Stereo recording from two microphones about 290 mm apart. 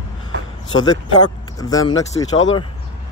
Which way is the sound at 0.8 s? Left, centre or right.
Centre.